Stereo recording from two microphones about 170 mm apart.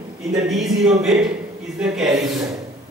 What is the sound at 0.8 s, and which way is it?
Speech, 5° right (ahead or behind).